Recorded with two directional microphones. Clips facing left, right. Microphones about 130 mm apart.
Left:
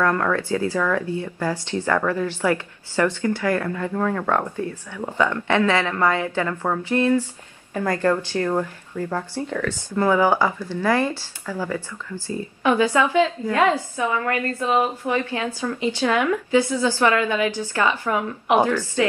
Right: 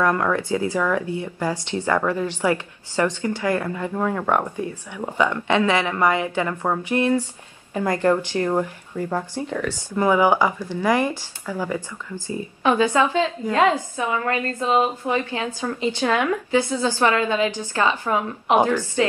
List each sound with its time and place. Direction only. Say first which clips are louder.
0.0 s a woman's voice: even; 15° right (ahead or behind)
15.7 s speech: even; 35° right (ahead or behind); by 19.0 s 15° right (ahead or behind)